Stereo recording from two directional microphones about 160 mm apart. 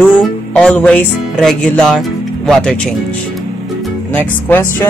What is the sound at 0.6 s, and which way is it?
Speech, 5° left (ahead or behind).